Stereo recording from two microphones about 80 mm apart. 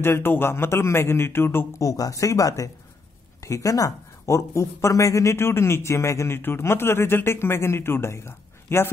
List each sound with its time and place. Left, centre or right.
0.0 s a man's voice: left
1.8 s speech: left